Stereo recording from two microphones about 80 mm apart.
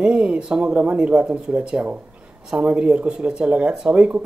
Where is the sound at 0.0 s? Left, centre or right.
Centre.